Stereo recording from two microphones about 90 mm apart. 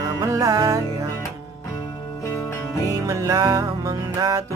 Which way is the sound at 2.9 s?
35° right (ahead or behind).